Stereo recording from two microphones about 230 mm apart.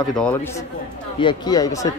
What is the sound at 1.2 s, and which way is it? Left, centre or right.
Speech, centre.